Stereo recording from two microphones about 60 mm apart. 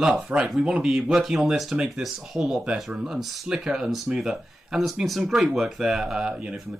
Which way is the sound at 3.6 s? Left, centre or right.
Centre.